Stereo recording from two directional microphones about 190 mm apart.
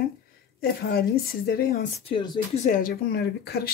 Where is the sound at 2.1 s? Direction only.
25° left (ahead or behind).